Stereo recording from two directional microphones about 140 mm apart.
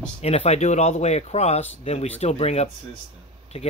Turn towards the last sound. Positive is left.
turn(degrees=45)  # may be behind; listen again after turning